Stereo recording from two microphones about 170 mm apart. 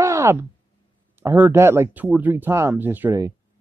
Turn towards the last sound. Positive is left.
turn(degrees=-15)  # may be behind; listen again after turning